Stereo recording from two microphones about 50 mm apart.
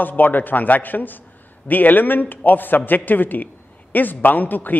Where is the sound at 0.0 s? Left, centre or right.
Left.